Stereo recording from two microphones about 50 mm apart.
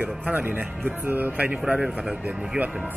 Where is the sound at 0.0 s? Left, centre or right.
Right.